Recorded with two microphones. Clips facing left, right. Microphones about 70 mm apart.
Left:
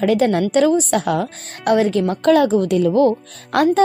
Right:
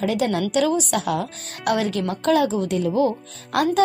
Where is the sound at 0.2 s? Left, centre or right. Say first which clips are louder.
Left 5 dB; left.